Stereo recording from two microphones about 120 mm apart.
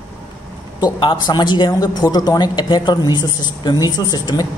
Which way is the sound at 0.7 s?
35° left (ahead or behind).